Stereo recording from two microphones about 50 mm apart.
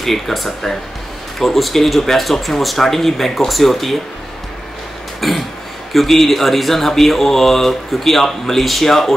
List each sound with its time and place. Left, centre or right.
0.0 s speech: centre
5.2 s speech: centre